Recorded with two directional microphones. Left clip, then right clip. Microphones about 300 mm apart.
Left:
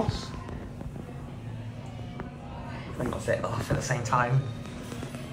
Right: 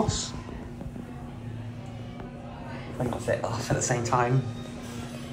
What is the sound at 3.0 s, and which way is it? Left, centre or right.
Speech, centre.